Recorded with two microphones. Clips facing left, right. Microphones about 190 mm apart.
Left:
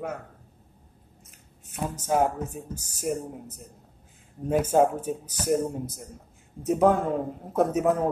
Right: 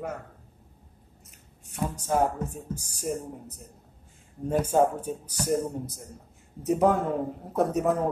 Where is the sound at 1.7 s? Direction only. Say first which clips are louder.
Left 1 dB; 5° left (ahead or behind).